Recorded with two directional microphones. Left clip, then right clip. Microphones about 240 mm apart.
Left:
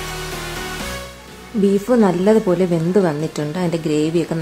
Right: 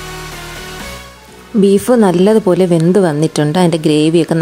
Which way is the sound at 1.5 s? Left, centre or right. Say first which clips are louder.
Right 6 dB; right.